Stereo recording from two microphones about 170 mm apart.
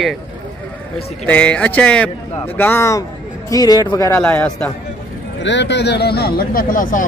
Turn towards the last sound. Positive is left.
turn(degrees=50)  # may be behind; listen again after turning